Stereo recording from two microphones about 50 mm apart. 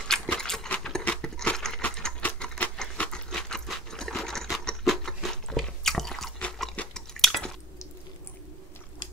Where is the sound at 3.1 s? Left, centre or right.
Centre.